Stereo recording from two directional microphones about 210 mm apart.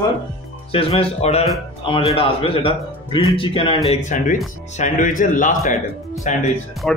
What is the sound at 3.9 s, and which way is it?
Speech, 35° left (ahead or behind).